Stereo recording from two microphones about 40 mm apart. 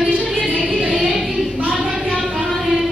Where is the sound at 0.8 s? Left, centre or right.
Centre.